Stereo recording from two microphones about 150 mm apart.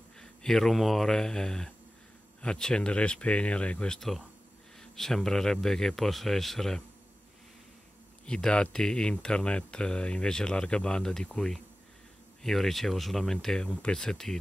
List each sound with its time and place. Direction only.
0.2 s speech: 5° left (ahead or behind)
8.3 s speech: 5° left (ahead or behind)